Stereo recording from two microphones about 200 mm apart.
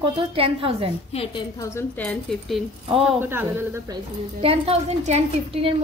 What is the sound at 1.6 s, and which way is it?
Speech, 10° left (ahead or behind).